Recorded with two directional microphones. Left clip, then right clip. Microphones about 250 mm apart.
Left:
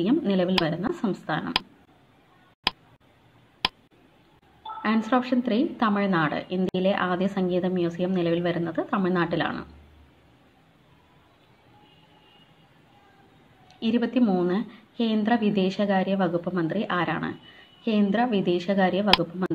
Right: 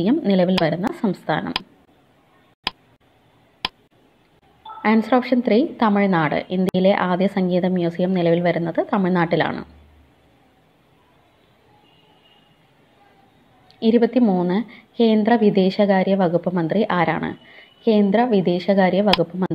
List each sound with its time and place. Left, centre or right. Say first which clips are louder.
0.0 s a woman's voice: right 5 dB; centre
2.7 s tick: even; centre
3.6 s a sound: even; centre
4.8 s a woman's voice: right 7 dB; centre
13.7 s a woman's voice: right 8 dB; centre